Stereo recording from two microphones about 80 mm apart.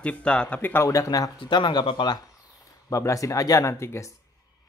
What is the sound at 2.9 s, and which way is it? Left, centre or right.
Speech, left.